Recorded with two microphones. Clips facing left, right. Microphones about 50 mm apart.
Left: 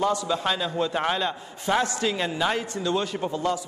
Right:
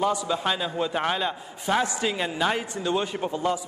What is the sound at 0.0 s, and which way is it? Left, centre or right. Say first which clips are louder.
A man's voice: even; centre.